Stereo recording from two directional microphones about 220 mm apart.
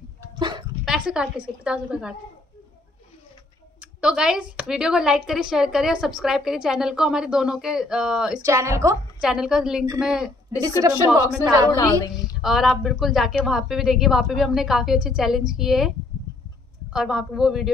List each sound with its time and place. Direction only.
0.4 s a sound: 20° right (ahead or behind)
0.8 s speech: 5° right (ahead or behind)
3.8 s speech: 5° right (ahead or behind)
8.5 s speech: 15° right (ahead or behind)
9.2 s speech: centre (ahead or behind)
10.8 s speech: 15° right (ahead or behind)
11.7 s a woman's voice: 15° left (ahead or behind)
12.1 s speech: centre (ahead or behind)
16.9 s speech: centre (ahead or behind)